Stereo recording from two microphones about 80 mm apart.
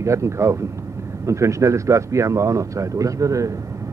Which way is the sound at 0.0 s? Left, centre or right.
Right.